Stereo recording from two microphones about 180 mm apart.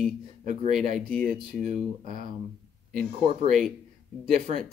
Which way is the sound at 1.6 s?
45° right (ahead or behind).